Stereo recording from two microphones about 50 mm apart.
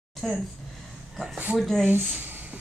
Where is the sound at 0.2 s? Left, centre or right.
Centre.